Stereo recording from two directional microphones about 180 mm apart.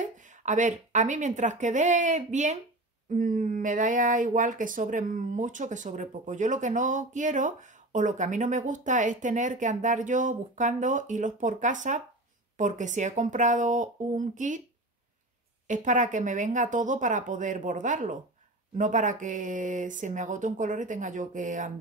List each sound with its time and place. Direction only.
0.0 s speech: 45° right (ahead or behind)
15.6 s speech: 45° right (ahead or behind)